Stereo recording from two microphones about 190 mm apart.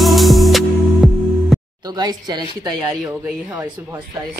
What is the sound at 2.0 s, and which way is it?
Speech, 20° right (ahead or behind).